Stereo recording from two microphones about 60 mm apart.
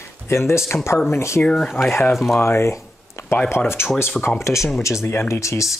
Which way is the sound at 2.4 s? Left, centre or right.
Left.